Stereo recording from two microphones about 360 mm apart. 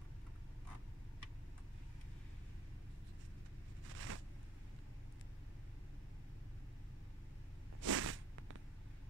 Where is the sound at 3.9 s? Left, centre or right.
Right.